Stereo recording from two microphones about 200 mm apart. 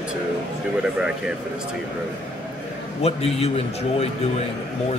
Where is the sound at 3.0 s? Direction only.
30° left (ahead or behind).